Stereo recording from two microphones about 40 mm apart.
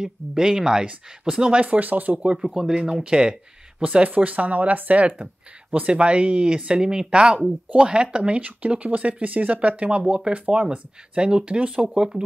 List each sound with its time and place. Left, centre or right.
0.0 s speech: centre
1.6 s speech: right
1.9 s speech: right
2.3 s speech: centre
3.8 s speech: right
8.4 s speech: right